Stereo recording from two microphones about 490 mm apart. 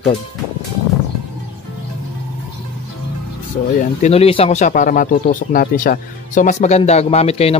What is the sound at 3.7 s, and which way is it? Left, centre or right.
Speech, centre.